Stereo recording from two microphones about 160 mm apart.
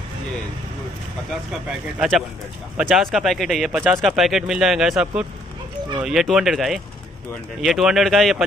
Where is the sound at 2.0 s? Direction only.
Centre (ahead or behind).